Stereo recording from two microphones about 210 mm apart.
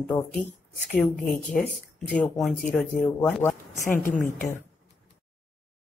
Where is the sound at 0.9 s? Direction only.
40° left (ahead or behind).